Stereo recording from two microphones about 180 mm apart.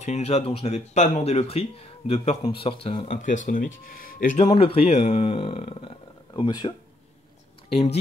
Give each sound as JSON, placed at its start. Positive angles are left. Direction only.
{"t": 0.0, "sound": "speech", "side_deg": 40}
{"t": 3.1, "sound": "speech", "side_deg": 45}
{"t": 4.5, "sound": "speech", "side_deg": 30}
{"t": 7.7, "sound": "speech", "side_deg": 35}